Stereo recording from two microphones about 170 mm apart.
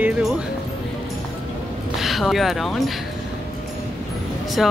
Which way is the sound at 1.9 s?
Centre (ahead or behind).